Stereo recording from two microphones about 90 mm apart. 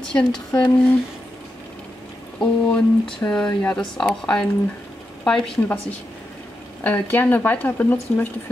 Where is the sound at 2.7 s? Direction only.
10° left (ahead or behind).